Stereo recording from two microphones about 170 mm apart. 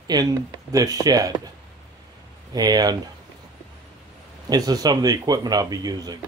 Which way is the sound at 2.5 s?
25° right (ahead or behind).